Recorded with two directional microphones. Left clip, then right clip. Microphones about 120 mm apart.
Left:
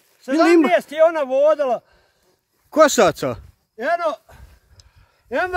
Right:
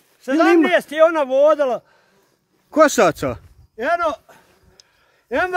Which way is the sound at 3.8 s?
10° left (ahead or behind).